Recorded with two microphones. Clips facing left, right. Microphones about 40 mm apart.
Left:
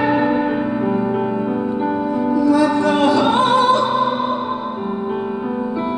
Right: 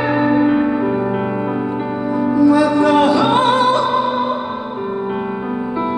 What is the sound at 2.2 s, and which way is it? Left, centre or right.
Music, right.